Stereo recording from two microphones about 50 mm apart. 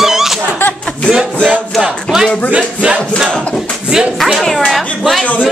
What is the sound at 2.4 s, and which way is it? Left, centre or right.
Music, right.